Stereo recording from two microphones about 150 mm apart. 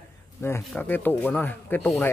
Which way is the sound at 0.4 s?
15° left (ahead or behind).